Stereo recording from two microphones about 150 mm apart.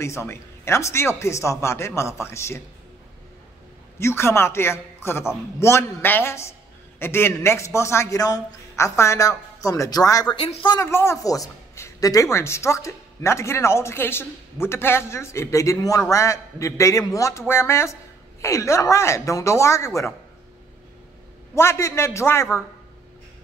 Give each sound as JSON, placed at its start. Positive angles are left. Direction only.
{"t": 0.0, "sound": "speech", "side_deg": 20}
{"t": 4.0, "sound": "speech", "side_deg": 15}
{"t": 10.4, "sound": "speech", "side_deg": 35}
{"t": 10.8, "sound": "speech", "side_deg": 15}
{"t": 21.5, "sound": "speech", "side_deg": 15}